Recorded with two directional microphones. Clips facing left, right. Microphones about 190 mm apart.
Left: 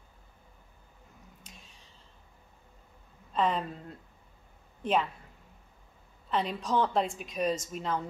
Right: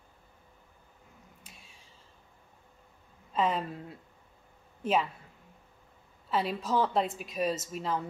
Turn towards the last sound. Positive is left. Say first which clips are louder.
# left 1 dB
turn(degrees=0)  # may be behind; listen again after turning